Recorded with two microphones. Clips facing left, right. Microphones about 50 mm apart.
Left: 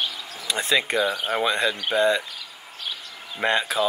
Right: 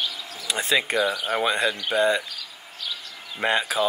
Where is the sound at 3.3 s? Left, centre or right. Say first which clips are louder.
Left 1 dB; centre.